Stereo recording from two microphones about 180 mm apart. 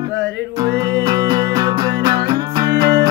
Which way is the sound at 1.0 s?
25° right (ahead or behind).